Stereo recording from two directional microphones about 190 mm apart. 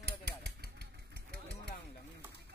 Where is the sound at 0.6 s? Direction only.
60° right (ahead or behind).